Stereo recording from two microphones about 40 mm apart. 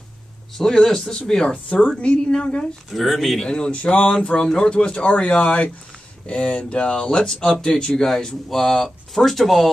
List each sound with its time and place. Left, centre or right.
0.6 s speech: centre
2.9 s speech: centre
3.3 s speech: left
7.9 s speech: centre